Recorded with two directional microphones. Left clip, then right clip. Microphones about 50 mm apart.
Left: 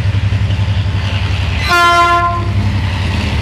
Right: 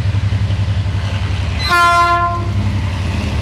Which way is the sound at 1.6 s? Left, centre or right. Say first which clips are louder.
Left 2 dB; centre.